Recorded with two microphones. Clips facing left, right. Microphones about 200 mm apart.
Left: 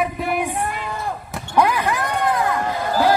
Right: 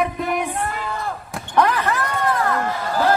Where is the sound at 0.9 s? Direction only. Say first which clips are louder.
Even; 15° left (ahead or behind).